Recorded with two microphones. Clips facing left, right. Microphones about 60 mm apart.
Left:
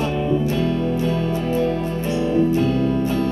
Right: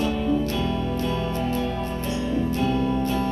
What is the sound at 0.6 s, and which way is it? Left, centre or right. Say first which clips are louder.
Music: left 5 dB; left.